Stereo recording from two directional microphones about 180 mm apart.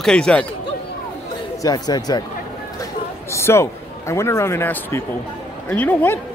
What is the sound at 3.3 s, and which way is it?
A man's voice, 15° left (ahead or behind).